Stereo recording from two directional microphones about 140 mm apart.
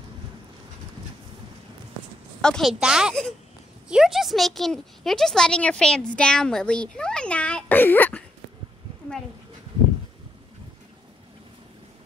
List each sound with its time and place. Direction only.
2.4 s speech: centre (ahead or behind)